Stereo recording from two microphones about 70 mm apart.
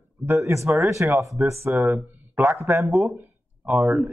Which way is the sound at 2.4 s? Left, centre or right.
Right.